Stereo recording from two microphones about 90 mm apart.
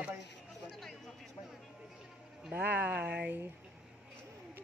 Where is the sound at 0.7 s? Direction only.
Centre (ahead or behind).